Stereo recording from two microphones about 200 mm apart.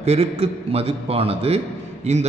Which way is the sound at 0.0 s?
30° right (ahead or behind).